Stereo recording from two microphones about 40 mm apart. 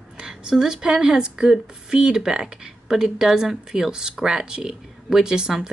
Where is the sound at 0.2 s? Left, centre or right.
Centre.